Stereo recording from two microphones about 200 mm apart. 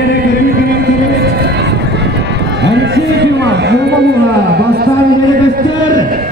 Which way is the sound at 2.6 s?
60° right (ahead or behind).